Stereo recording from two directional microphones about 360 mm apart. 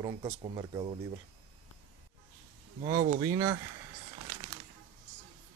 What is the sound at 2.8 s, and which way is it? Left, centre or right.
Speech, right.